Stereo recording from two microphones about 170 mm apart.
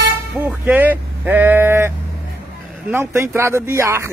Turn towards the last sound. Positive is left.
turn(degrees=-15)  # may be behind; listen again after turning